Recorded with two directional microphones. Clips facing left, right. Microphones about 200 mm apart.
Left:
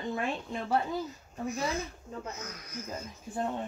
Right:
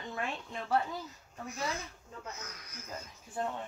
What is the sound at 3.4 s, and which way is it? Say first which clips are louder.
Speech: left 3 dB; 30° left (ahead or behind).